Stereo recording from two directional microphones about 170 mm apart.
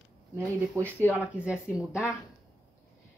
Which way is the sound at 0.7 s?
15° right (ahead or behind).